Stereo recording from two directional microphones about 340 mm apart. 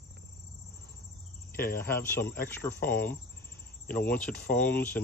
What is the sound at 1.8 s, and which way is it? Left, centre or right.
Speech, centre.